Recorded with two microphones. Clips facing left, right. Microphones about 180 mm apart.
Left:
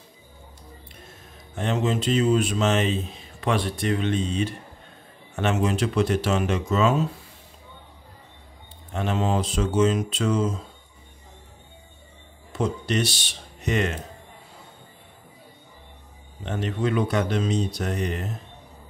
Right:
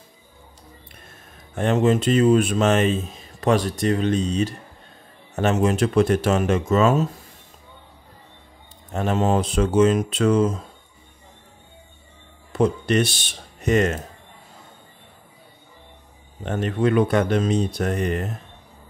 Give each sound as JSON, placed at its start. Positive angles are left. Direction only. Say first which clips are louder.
{"t": 1.5, "sound": "speech", "louder": "right 6 dB", "side_deg": -50}
{"t": 8.9, "sound": "speech", "louder": "right 4 dB", "side_deg": -45}
{"t": 12.5, "sound": "speech", "louder": "right 6 dB", "side_deg": -55}
{"t": 16.4, "sound": "speech", "louder": "right 5 dB", "side_deg": -55}